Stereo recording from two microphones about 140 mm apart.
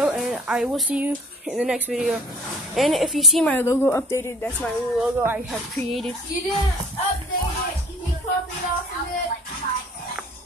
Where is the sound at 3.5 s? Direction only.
15° left (ahead or behind).